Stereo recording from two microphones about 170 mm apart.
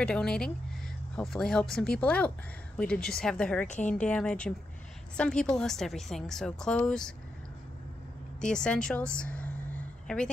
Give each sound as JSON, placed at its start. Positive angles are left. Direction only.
{"t": 0.0, "sound": "a woman's voice", "side_deg": 5}
{"t": 3.6, "sound": "a woman's voice", "side_deg": 45}
{"t": 4.0, "sound": "a woman's voice", "side_deg": 5}
{"t": 8.4, "sound": "a woman's voice", "side_deg": 5}